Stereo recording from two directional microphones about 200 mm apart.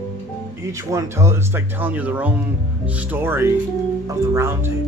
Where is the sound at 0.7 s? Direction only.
15° right (ahead or behind).